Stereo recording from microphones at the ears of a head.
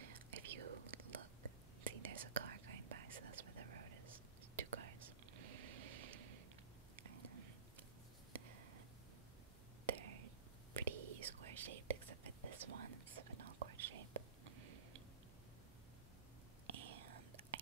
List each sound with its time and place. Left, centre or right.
0.0 s whispering: right
8.3 s a sound: right
9.8 s whispering: right
16.6 s whispering: right